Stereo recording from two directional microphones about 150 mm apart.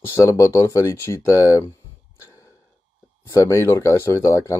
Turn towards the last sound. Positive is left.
turn(degrees=20)  # may be behind; listen again after turning